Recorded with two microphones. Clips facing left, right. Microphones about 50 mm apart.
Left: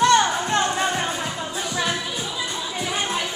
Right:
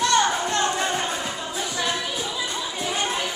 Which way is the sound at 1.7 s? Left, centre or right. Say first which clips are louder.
Left 2 dB; left.